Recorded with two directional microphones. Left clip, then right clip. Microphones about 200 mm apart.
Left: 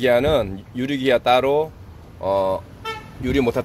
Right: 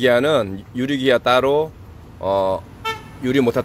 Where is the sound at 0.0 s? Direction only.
10° right (ahead or behind).